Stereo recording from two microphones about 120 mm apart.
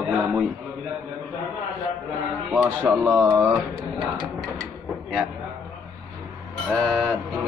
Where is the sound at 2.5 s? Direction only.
15° right (ahead or behind).